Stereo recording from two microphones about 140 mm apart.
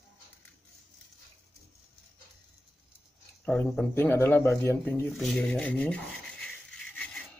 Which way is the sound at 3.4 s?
10° left (ahead or behind).